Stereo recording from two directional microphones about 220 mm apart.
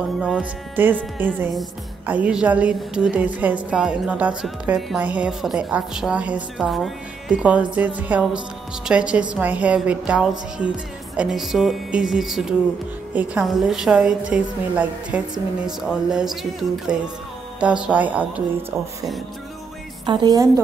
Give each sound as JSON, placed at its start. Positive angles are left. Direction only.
{"t": 0.2, "sound": "a woman's voice", "side_deg": -5}
{"t": 20.1, "sound": "a woman's voice", "side_deg": -20}